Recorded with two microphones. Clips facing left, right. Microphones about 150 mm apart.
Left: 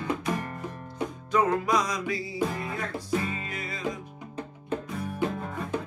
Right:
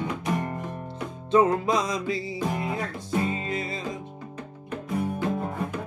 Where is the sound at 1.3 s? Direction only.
25° right (ahead or behind).